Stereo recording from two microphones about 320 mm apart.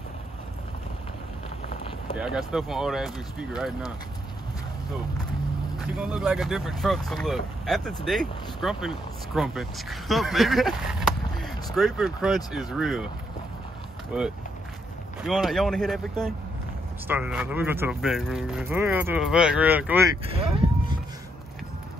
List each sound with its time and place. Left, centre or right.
2.1 s speech: centre
5.8 s speech: centre
14.1 s speech: centre
20.3 s cattle: centre